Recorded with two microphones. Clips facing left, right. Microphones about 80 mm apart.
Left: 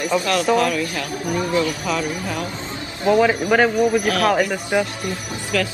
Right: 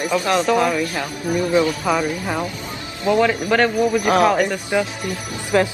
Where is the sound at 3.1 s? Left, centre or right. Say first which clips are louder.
Left 1 dB; centre.